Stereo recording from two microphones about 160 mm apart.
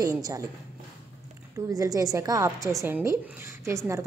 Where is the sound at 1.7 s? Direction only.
20° right (ahead or behind).